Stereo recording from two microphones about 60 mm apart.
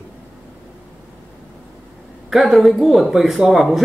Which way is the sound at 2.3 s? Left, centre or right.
Centre.